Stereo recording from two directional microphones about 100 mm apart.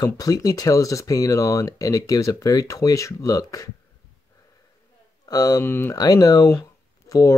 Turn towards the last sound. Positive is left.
turn(degrees=35)  # may be behind; listen again after turning